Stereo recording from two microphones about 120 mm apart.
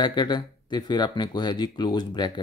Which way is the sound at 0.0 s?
40° left (ahead or behind).